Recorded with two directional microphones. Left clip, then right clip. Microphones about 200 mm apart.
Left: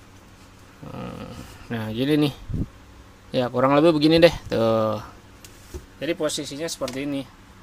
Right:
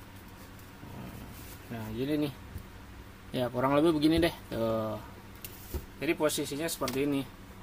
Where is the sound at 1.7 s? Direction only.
45° left (ahead or behind).